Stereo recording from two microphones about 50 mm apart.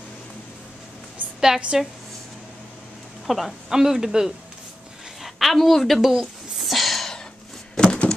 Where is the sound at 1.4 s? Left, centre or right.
Centre.